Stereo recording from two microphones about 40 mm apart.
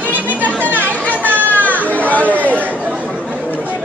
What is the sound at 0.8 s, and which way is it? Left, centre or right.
Chatter, left.